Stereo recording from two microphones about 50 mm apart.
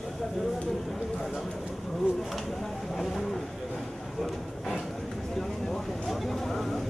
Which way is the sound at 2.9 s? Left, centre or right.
Centre.